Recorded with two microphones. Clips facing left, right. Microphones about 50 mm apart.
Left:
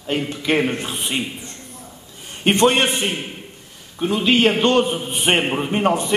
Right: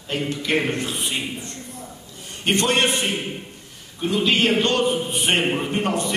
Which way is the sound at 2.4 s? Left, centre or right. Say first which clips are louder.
Left 5 dB; left.